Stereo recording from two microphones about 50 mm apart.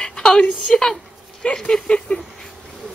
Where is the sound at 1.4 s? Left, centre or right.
Centre.